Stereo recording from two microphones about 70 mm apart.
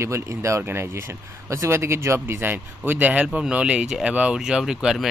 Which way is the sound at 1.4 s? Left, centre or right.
Right.